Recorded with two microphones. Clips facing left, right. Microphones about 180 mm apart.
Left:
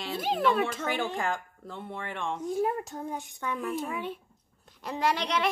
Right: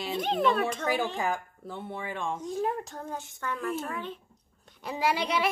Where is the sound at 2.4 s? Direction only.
10° left (ahead or behind).